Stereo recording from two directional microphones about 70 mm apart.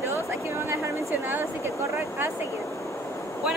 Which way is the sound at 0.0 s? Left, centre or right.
Right.